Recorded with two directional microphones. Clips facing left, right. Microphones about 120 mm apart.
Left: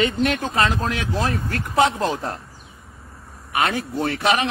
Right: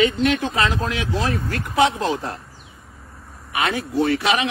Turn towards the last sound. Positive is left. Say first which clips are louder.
# right 1 dB
turn(degrees=45)  # may be behind; listen again after turning